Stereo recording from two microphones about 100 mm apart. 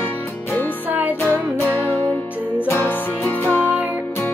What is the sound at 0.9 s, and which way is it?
Music, 15° right (ahead or behind).